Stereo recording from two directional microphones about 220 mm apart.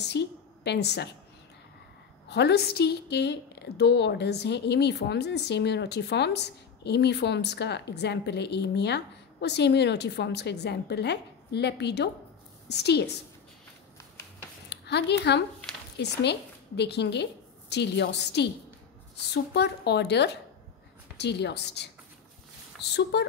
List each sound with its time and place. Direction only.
0.0 s a woman's voice: 50° left (ahead or behind)
2.2 s a woman's voice: 50° left (ahead or behind)
14.7 s a woman's voice: 50° left (ahead or behind)